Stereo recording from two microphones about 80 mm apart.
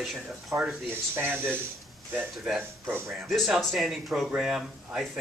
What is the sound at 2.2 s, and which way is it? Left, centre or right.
Speech, centre.